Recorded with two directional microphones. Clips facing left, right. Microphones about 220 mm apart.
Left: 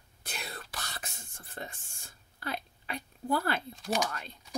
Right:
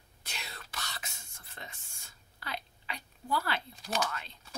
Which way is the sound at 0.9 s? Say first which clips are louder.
Left 2 dB; 50° left (ahead or behind).